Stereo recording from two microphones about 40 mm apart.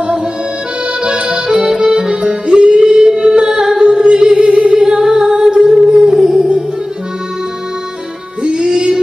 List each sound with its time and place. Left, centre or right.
1.0 s accordion: right
4.4 s singing: right
4.7 s singing: centre
5.3 s music: right
8.5 s music: right